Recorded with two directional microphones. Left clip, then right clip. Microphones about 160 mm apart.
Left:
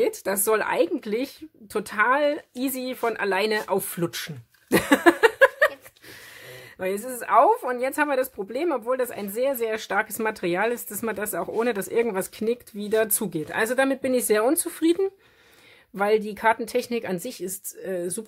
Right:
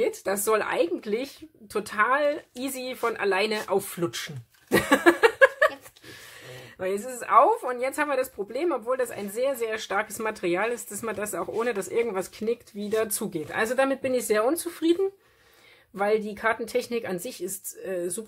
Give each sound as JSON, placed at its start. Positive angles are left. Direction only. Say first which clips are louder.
{"t": 0.0, "sound": "speech", "louder": "left 2 dB", "side_deg": 50}